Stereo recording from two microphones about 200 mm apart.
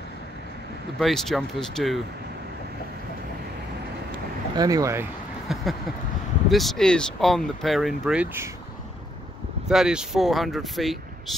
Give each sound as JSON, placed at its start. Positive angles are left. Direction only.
{"t": 0.9, "sound": "speech", "side_deg": 0}
{"t": 4.6, "sound": "speech", "side_deg": -20}
{"t": 5.5, "sound": "speech", "side_deg": 0}
{"t": 9.7, "sound": "speech", "side_deg": -5}